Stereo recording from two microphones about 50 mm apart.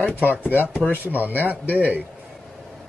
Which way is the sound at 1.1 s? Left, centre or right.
Right.